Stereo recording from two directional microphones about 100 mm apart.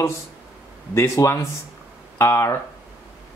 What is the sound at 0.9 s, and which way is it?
Speech, 30° left (ahead or behind).